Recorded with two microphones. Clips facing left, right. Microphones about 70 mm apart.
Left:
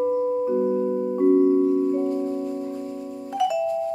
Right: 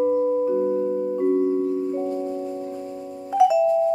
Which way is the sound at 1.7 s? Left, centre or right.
Left.